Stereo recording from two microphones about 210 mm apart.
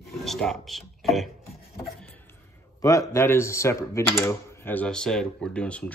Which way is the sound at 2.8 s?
15° left (ahead or behind).